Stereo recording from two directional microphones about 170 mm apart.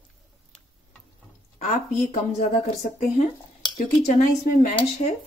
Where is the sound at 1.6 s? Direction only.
40° left (ahead or behind).